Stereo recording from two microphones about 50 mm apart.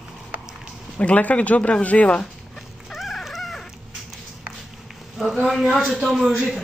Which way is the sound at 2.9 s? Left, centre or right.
Centre.